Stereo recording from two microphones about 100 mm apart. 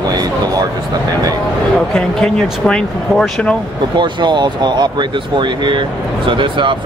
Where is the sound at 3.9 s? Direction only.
50° right (ahead or behind).